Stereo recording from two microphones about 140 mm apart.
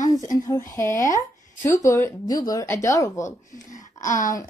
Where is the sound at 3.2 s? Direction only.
60° left (ahead or behind).